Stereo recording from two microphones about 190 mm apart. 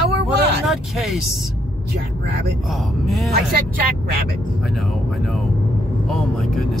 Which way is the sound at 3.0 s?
Centre (ahead or behind).